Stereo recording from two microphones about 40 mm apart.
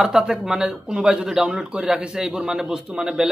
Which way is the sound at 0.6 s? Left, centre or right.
Right.